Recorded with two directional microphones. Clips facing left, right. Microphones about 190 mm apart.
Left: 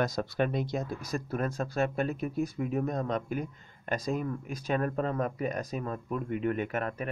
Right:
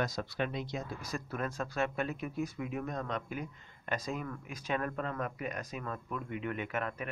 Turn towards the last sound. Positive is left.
turn(degrees=40)  # may be behind; listen again after turning